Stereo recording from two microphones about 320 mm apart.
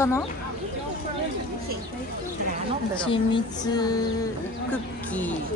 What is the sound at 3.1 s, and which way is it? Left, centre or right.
Speech, centre.